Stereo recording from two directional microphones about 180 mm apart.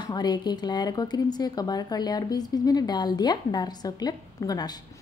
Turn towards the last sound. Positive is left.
turn(degrees=20)  # may be behind; listen again after turning